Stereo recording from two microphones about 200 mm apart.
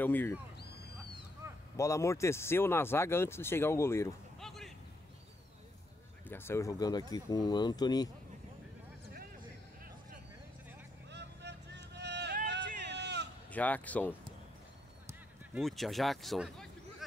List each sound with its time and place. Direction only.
0.0 s speech: 10° left (ahead or behind)
1.4 s a sound: 15° right (ahead or behind)
1.8 s speech: 15° left (ahead or behind)
4.4 s a sound: centre (ahead or behind)
6.2 s speech: 10° left (ahead or behind)
11.1 s vehicle: 60° right (ahead or behind)
12.4 s a sound: 60° right (ahead or behind)
13.5 s speech: 5° left (ahead or behind)
15.5 s speech: centre (ahead or behind)